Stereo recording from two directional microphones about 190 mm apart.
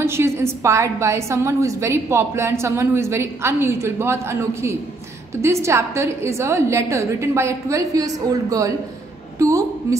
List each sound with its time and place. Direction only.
0.0 s a woman's voice: 15° right (ahead or behind)